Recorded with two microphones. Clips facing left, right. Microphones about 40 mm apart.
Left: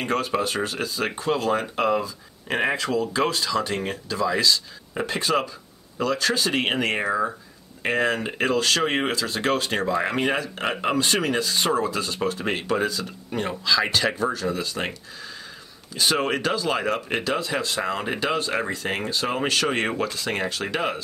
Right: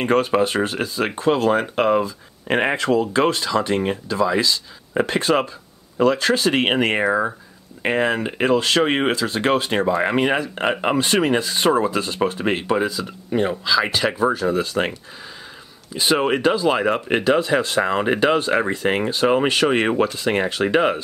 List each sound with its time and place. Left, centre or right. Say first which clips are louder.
0.0 s speech: right 6 dB; right
4.9 s speech: right 5 dB; right
12.4 s speech: right 2 dB; centre
14.2 s speech: right 6 dB; right
15.9 s speech: right 4 dB; centre